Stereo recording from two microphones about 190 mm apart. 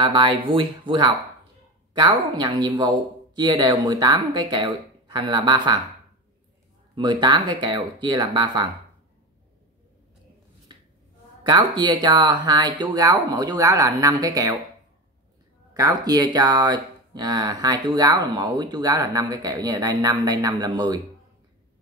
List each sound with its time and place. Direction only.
0.0 s speech: 25° right (ahead or behind)
7.0 s speech: 25° right (ahead or behind)
11.4 s speech: 25° right (ahead or behind)
15.7 s speech: 20° right (ahead or behind)